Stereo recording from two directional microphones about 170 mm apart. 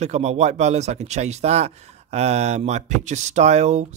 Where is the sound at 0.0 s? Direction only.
40° right (ahead or behind).